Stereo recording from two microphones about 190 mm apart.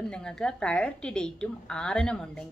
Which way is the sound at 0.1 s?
5° left (ahead or behind).